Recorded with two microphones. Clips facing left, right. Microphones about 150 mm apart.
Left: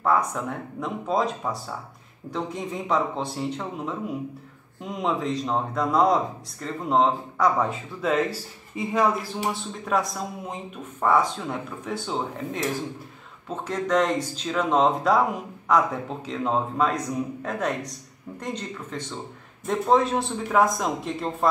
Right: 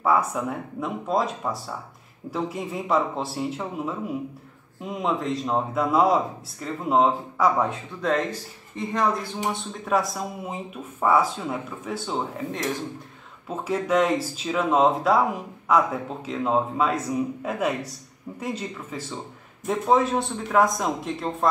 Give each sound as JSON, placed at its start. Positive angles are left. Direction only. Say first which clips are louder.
{"t": 0.0, "sound": "speech", "louder": "right 1 dB", "side_deg": -5}